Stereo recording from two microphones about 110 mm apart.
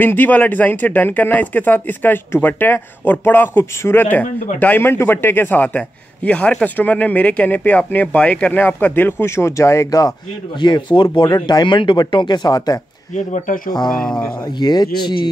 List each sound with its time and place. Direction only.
0.0 s a man's voice: 15° left (ahead or behind); by 12.8 s 35° left (ahead or behind)
13.8 s speech: 5° left (ahead or behind)
14.4 s speech: 40° left (ahead or behind)